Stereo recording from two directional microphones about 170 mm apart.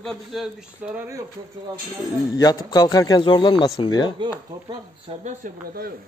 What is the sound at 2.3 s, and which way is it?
A man's voice, 20° left (ahead or behind).